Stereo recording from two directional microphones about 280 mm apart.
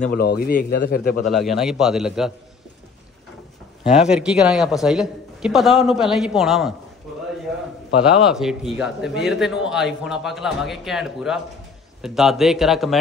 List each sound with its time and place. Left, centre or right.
0.0 s a man's voice: left
1.2 s a man's voice: centre
3.9 s a man's voice: centre
8.3 s a man's voice: centre